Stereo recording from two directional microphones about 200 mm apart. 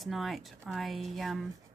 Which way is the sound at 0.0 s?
Centre (ahead or behind).